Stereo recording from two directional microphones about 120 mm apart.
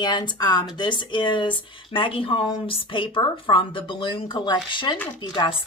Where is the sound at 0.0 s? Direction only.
35° left (ahead or behind).